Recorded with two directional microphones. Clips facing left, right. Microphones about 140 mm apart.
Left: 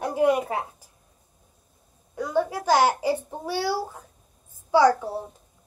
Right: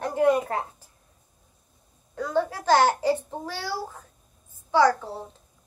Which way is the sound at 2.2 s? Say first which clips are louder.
Left 1 dB; 10° left (ahead or behind).